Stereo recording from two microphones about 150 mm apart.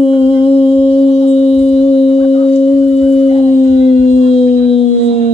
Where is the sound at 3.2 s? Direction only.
40° left (ahead or behind).